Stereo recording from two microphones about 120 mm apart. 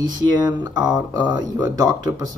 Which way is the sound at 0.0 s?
35° right (ahead or behind).